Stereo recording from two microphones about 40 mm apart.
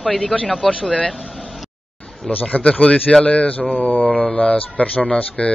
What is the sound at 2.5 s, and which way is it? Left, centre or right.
Mantra, left.